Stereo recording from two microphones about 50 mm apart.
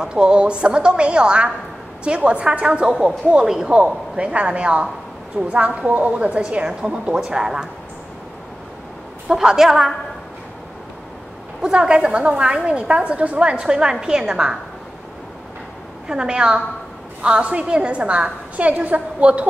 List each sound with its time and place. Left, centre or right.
0.0 s a woman's voice: centre
9.3 s a woman's voice: centre
11.6 s a woman's voice: centre
16.1 s a woman's voice: centre